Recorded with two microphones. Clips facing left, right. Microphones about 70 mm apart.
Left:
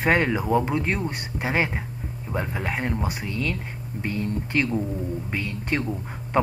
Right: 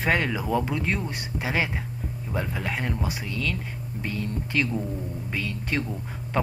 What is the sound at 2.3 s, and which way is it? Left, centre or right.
Speech, centre.